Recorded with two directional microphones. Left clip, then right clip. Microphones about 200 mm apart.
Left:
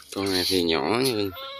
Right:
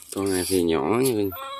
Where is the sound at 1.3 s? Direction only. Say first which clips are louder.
Right 2 dB; 25° right (ahead or behind).